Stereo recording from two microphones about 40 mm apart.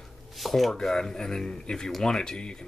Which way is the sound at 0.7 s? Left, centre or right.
Centre.